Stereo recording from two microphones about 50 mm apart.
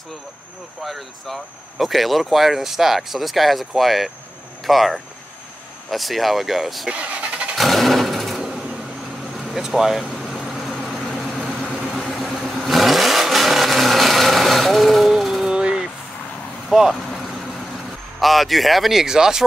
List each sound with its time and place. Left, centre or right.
0.8 s speech: centre
6.9 s vehicle: right
7.5 s sewing machine: centre
8.4 s a sound: centre
9.4 s vehicle: centre
16.7 s speech: centre
18.2 s speech: centre